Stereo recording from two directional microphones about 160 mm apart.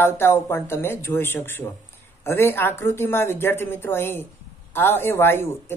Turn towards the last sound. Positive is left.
turn(degrees=15)  # may be behind; listen again after turning